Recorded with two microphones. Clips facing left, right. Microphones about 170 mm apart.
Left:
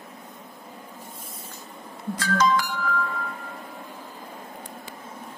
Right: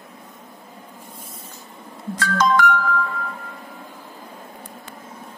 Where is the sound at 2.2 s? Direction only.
60° right (ahead or behind).